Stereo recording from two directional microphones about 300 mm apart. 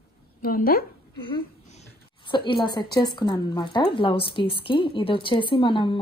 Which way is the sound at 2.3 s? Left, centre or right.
Centre.